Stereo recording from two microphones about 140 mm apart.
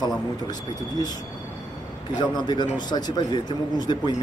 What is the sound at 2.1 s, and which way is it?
Speech, 30° left (ahead or behind).